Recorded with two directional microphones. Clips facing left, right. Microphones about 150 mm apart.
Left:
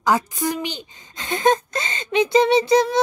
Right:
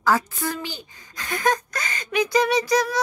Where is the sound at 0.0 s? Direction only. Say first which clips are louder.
Left 2 dB; 20° left (ahead or behind).